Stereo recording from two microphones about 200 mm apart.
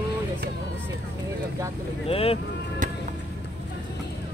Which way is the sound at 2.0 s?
30° left (ahead or behind).